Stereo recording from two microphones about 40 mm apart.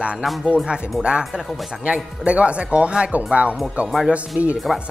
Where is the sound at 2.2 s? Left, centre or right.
Right.